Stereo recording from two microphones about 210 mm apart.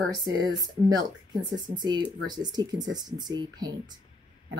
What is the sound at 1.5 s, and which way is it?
Speech, 20° right (ahead or behind).